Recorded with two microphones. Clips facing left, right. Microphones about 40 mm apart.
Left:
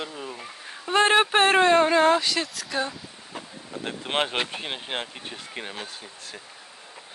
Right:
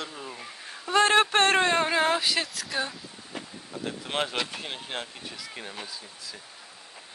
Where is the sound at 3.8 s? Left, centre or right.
Left.